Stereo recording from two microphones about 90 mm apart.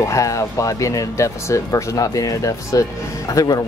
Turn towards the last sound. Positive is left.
turn(degrees=45)  # may be behind; listen again after turning